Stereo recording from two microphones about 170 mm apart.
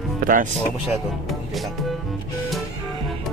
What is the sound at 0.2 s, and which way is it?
Music, 55° right (ahead or behind).